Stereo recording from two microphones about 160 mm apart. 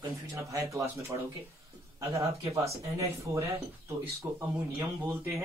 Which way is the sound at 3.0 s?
20° right (ahead or behind).